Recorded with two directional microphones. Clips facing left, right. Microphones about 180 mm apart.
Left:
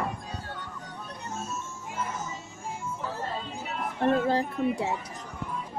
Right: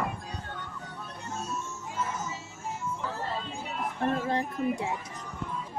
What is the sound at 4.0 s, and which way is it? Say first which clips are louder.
Speech: left 5 dB; 30° left (ahead or behind).